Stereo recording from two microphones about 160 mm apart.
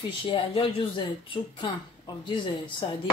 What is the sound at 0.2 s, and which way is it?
Speech, 35° left (ahead or behind).